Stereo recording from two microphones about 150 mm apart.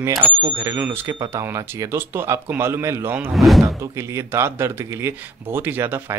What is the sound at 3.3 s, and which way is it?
Speech, centre (ahead or behind).